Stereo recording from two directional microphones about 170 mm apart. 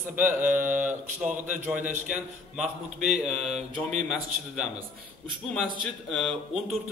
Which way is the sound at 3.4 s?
40° right (ahead or behind).